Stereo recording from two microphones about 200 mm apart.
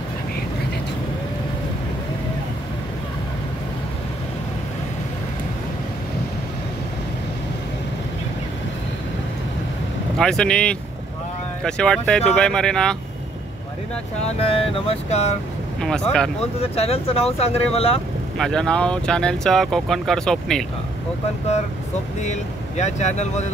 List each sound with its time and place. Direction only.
10.1 s speech: 5° left (ahead or behind)
14.2 s vehicle: 30° left (ahead or behind)
15.8 s speech: 5° left (ahead or behind)
16.7 s speech: 30° left (ahead or behind)
17.7 s vehicle: 30° left (ahead or behind)
18.4 s speech: 5° left (ahead or behind)
22.2 s speech: 35° left (ahead or behind)